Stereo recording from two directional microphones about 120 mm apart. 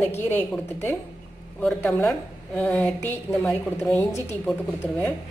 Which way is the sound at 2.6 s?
5° left (ahead or behind).